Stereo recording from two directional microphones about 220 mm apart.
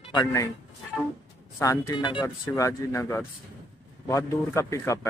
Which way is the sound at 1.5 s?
15° left (ahead or behind).